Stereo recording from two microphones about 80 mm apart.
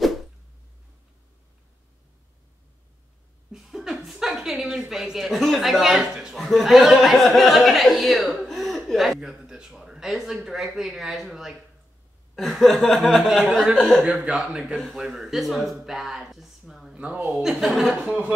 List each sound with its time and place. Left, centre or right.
3.5 s a woman's voice: centre
14.2 s speech: centre
16.9 s speech: centre
17.9 s speech: centre